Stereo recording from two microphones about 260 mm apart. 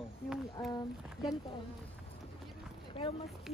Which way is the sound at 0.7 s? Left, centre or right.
Centre.